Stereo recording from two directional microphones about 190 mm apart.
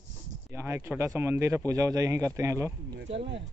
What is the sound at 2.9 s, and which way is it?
Speech, 70° right (ahead or behind).